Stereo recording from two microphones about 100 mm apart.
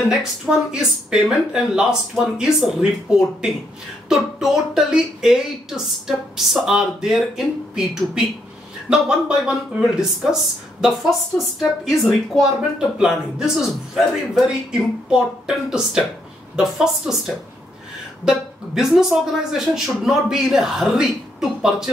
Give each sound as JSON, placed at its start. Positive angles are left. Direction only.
{"t": 0.1, "sound": "speech", "side_deg": -5}
{"t": 18.8, "sound": "speech", "side_deg": -5}